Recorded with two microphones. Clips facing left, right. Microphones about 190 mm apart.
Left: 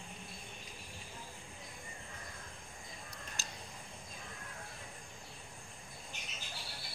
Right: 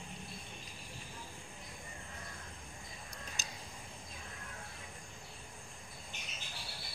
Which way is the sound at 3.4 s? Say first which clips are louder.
Even; 20° right (ahead or behind).